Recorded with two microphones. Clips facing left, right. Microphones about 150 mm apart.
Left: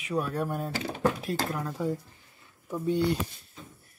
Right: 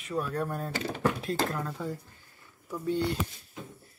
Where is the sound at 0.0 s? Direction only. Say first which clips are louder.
Left 2 dB; 5° left (ahead or behind).